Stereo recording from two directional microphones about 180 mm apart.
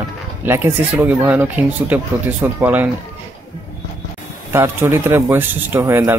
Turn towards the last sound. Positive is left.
turn(degrees=-15)  # may be behind; listen again after turning